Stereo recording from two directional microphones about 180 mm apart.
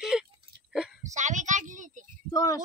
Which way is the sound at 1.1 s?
40° right (ahead or behind).